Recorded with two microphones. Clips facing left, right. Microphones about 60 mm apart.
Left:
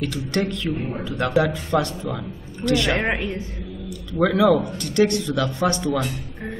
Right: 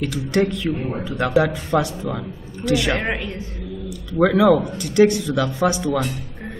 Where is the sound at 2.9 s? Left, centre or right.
Centre.